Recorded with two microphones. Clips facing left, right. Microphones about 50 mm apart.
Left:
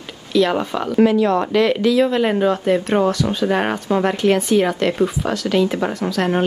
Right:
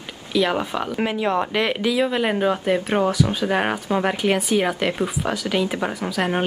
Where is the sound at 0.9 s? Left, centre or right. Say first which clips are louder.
Left 8 dB; right.